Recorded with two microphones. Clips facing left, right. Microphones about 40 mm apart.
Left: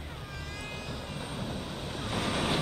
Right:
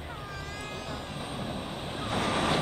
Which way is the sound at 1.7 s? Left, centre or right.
Centre.